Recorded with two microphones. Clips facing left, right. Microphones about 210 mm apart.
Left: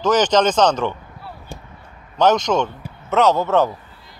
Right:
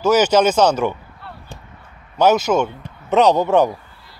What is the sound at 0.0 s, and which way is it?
Speech, 10° right (ahead or behind).